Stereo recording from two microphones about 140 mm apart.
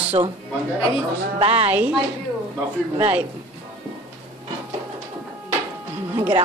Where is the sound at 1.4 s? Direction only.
40° right (ahead or behind).